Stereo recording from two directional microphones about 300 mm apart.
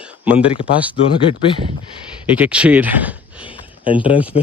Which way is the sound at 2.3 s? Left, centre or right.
Centre.